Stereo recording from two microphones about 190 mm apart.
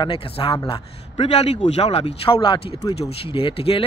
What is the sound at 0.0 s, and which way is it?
Speech, 25° left (ahead or behind).